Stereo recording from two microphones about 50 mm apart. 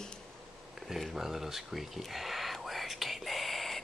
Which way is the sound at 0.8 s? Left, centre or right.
Centre.